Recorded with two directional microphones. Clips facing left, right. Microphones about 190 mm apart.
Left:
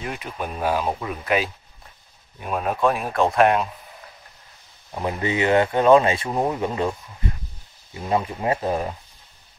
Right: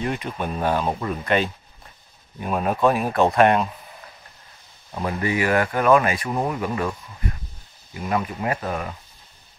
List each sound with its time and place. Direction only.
0.0 s speech: 5° left (ahead or behind)
4.9 s speech: 20° left (ahead or behind)